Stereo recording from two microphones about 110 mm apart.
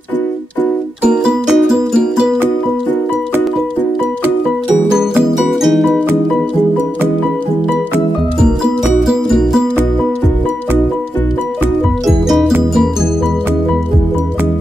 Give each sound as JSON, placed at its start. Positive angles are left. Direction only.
{"t": 1.0, "sound": "music", "side_deg": -5}
{"t": 4.9, "sound": "music", "side_deg": -5}
{"t": 9.0, "sound": "music", "side_deg": -5}
{"t": 12.1, "sound": "music", "side_deg": -5}